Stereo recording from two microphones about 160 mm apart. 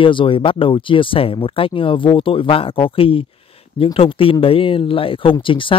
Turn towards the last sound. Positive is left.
turn(degrees=30)  # may be behind; listen again after turning